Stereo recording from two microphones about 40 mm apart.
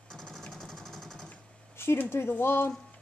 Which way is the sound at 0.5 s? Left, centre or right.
Centre.